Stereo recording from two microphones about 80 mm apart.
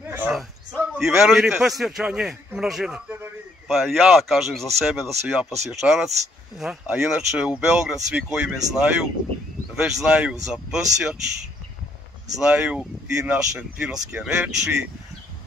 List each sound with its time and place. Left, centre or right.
0.7 s speech: centre
12.4 s speech: centre